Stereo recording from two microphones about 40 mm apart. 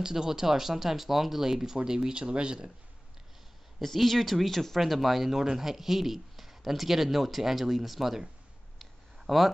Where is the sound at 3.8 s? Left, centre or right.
Centre.